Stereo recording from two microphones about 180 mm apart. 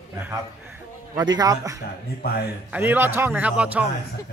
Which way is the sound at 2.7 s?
10° right (ahead or behind).